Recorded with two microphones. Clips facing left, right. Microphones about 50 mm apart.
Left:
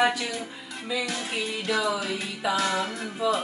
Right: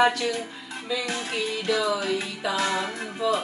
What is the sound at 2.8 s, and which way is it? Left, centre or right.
Speech, right.